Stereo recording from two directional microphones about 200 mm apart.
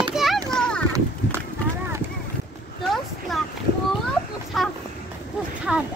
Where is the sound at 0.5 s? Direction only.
5° left (ahead or behind).